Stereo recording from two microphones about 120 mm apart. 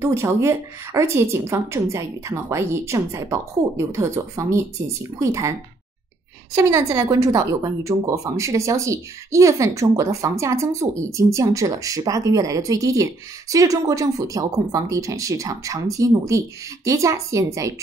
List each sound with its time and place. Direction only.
0.0 s speech: 25° right (ahead or behind)
6.5 s speech: 25° right (ahead or behind)